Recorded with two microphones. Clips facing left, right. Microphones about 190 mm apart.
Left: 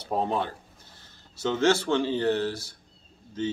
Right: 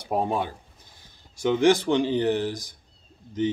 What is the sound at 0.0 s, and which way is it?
Speech, 15° right (ahead or behind).